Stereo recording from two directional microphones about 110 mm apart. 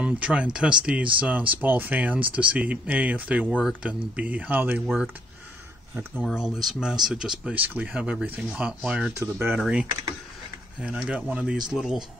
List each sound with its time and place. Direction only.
0.0 s speech: 10° right (ahead or behind)
4.8 s speech: 5° right (ahead or behind)
6.1 s speech: centre (ahead or behind)
9.1 s speech: 20° right (ahead or behind)
9.6 s speech: 5° right (ahead or behind)